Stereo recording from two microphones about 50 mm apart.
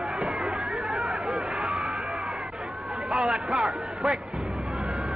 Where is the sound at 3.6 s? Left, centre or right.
Centre.